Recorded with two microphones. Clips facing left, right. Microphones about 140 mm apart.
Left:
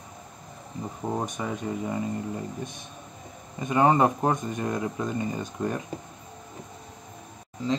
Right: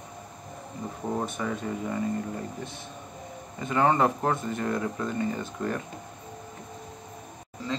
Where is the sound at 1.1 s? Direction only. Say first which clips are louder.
Right 1 dB; 15° left (ahead or behind).